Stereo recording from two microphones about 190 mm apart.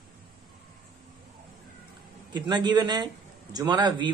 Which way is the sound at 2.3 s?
25° right (ahead or behind).